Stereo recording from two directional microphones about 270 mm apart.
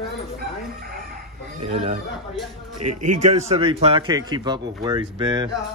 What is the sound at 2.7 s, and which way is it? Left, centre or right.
Speech, right.